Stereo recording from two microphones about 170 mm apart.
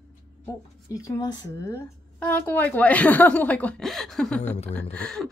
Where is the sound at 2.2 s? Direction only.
10° left (ahead or behind).